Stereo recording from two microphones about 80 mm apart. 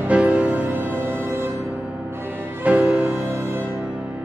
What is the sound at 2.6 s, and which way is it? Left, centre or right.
Music, centre.